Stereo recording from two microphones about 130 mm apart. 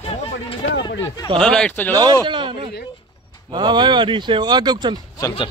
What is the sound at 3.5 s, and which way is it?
Speech, 35° right (ahead or behind).